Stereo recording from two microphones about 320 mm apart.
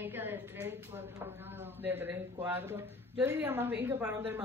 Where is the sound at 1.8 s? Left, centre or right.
Centre.